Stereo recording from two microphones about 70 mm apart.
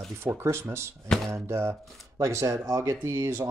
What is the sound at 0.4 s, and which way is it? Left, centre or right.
Speech, right.